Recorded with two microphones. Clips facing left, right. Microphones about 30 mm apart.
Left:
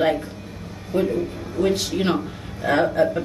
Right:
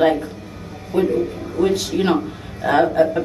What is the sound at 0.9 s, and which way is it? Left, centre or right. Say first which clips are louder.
Speech: right 3 dB; right.